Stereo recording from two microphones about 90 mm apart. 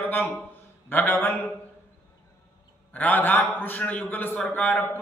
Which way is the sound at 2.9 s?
20° left (ahead or behind).